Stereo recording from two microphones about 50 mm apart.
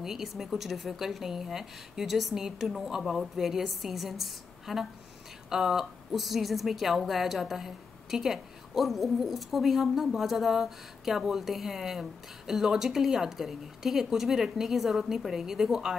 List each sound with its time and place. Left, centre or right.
0.0 s a woman's voice: centre